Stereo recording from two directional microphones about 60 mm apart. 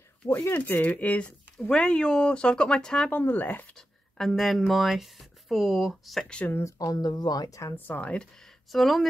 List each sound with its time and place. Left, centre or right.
0.2 s speech: left
0.7 s speech: left; by 3.1 s centre
3.1 s speech: left
3.7 s speech: centre
6.8 s speech: left
7.7 s speech: left
8.6 s speech: centre